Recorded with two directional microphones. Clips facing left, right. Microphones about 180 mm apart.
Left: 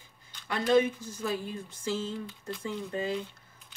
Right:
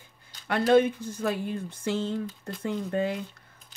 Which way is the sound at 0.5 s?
60° right (ahead or behind).